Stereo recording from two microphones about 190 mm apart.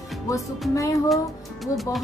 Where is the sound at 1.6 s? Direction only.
Centre (ahead or behind).